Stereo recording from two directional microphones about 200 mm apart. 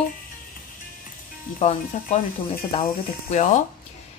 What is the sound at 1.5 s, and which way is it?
Speech, 30° left (ahead or behind).